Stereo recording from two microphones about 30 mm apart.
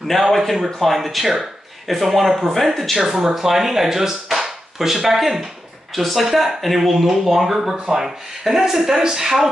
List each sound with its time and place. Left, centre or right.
0.3 s speech: centre
3.1 s speech: centre
7.7 s speech: centre